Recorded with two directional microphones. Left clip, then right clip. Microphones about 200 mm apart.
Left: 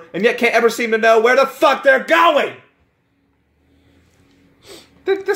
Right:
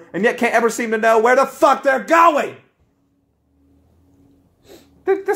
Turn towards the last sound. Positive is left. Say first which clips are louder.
# even
turn(degrees=-35)  # may be behind; listen again after turning